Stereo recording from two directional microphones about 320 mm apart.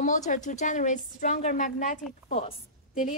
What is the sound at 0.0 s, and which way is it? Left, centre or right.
A woman's voice, left.